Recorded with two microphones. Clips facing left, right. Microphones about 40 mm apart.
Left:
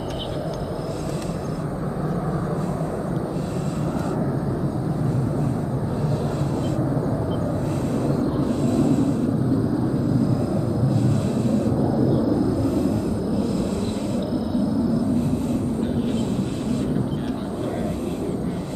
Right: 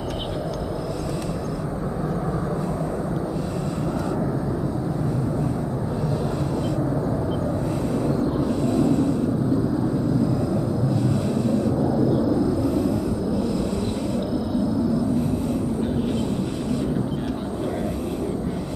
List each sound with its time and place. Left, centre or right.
8.1 s vehicle: centre
8.5 s vehicle: left
11.8 s vehicle: centre